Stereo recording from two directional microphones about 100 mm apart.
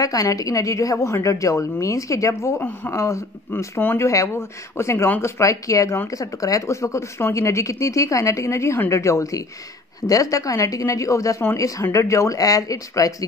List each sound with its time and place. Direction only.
0.0 s speech: 35° left (ahead or behind)
2.6 s speech: 20° left (ahead or behind)
3.0 s speech: 30° left (ahead or behind)